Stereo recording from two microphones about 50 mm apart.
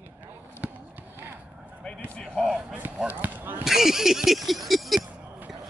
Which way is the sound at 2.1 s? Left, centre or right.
Centre.